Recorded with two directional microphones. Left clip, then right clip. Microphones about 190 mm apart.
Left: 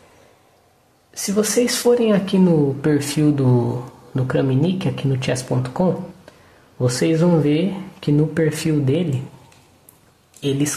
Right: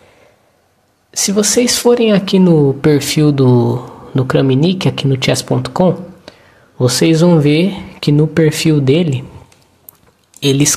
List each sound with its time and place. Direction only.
1.1 s speech: 15° right (ahead or behind)